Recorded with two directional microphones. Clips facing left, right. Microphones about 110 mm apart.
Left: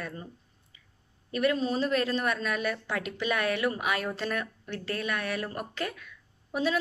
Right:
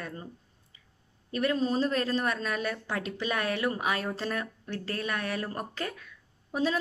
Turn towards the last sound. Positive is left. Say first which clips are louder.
# even
turn(degrees=-35)  # may be behind; listen again after turning